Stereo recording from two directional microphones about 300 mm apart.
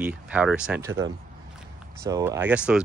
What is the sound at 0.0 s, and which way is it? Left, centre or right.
Speech, centre.